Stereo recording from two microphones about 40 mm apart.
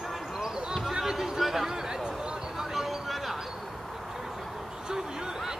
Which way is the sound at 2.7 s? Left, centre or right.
Centre.